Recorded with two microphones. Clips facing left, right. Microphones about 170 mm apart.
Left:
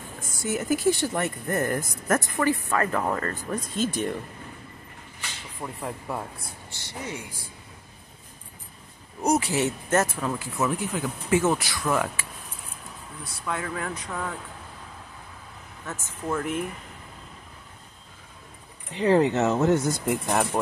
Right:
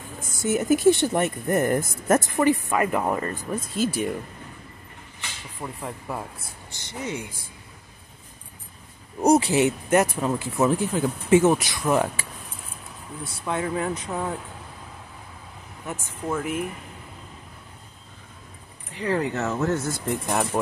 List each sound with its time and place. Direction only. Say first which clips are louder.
0.4 s speech: right 5 dB; 20° right (ahead or behind)
5.6 s speech: even; centre (ahead or behind)
6.7 s speech: right 4 dB; 20° right (ahead or behind)
9.2 s speech: right 5 dB; 35° right (ahead or behind)
9.5 s speech: right 4 dB; 15° right (ahead or behind)
13.2 s speech: right 4 dB; 25° right (ahead or behind)
15.8 s speech: right 2 dB; 15° right (ahead or behind)
18.9 s speech: left 5 dB; 25° left (ahead or behind)
20.1 s speech: even; centre (ahead or behind)